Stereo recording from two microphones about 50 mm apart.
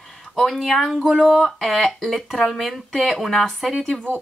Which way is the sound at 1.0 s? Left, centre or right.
Centre.